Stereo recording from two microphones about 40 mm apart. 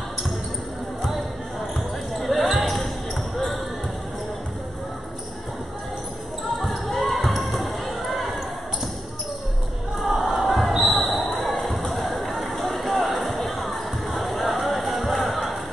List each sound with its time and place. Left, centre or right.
1.0 s basketball bounce: centre
6.6 s basketball bounce: centre
10.0 s crowd: centre
10.4 s basketball bounce: centre
12.7 s music: centre